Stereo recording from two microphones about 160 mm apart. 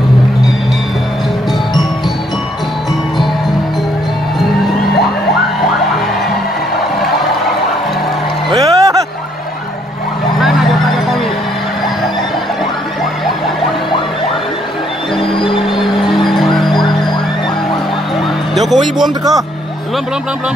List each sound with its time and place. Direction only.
8.5 s a sound: 20° right (ahead or behind)
15.3 s music: 30° left (ahead or behind)
16.1 s music: centre (ahead or behind)
18.5 s music: centre (ahead or behind)